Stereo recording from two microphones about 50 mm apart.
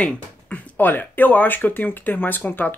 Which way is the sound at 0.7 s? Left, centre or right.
Left.